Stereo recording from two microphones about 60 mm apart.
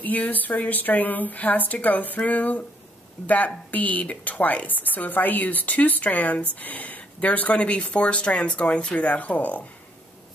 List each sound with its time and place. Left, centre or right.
0.0 s speech: left